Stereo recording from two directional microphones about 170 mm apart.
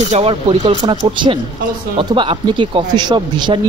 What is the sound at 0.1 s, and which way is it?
Speech, 35° right (ahead or behind).